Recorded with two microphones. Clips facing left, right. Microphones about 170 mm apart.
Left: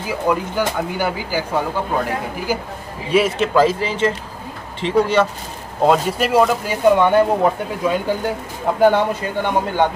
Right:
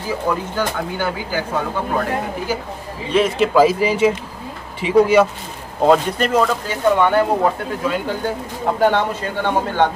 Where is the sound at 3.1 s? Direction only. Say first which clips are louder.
Right 1 dB; centre (ahead or behind).